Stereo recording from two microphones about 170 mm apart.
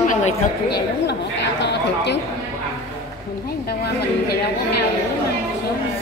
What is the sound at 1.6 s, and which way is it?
Speech, 90° left.